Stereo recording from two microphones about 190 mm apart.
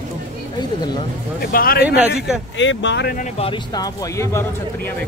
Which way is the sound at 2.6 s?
75° left (ahead or behind).